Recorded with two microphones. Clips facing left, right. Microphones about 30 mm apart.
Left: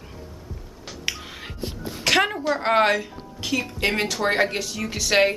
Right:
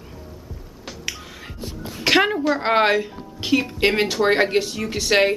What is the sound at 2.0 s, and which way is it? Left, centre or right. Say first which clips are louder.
Music: right 3 dB; centre.